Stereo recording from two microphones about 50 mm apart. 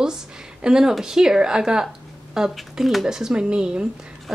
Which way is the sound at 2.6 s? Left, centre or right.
Centre.